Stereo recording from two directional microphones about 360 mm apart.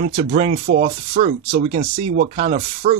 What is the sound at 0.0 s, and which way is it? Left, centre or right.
A man's voice, right.